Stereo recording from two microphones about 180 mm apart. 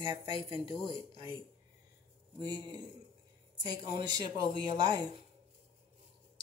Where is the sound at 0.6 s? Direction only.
30° left (ahead or behind).